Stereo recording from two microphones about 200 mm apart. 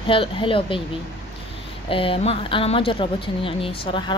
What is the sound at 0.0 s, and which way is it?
Speech, 25° left (ahead or behind).